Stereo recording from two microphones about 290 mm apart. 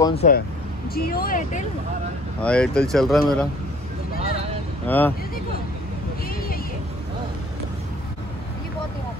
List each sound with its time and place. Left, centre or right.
0.0 s speech: left
2.4 s speech: centre
4.8 s speech: centre
6.2 s vehicle: left